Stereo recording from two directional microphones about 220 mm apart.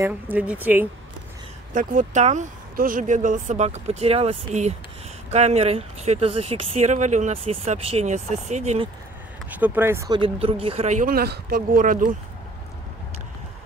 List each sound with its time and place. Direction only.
0.0 s speech: 5° right (ahead or behind)
1.7 s speech: 35° right (ahead or behind)
9.6 s speech: 10° right (ahead or behind); by 12.1 s 40° right (ahead or behind)